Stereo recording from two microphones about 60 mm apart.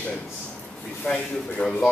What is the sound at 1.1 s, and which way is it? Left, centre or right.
Speech, centre.